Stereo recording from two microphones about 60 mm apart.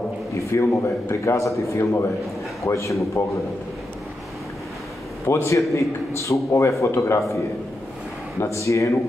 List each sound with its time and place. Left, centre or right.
0.4 s a man's voice: left
5.2 s a man's voice: left
8.4 s a man's voice: left